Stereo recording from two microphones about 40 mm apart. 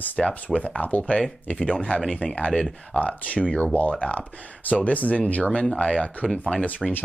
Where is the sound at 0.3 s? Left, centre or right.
Left.